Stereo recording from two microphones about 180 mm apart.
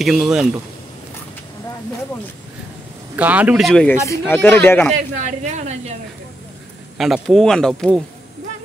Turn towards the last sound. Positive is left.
turn(degrees=5)  # may be behind; listen again after turning